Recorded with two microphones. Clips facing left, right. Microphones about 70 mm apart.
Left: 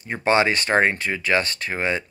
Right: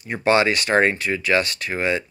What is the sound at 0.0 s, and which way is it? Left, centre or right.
Speech, left.